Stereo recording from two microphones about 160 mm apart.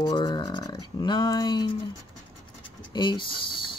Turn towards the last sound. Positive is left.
turn(degrees=30)  # may be behind; listen again after turning